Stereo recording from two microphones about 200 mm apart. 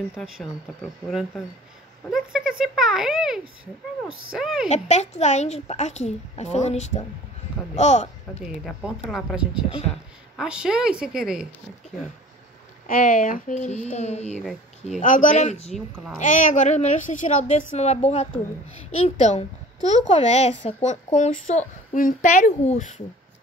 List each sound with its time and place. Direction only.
2.0 s speech: 5° right (ahead or behind)
4.6 s speech: 35° left (ahead or behind)
8.6 s speech: centre (ahead or behind)
12.8 s speech: 40° left (ahead or behind)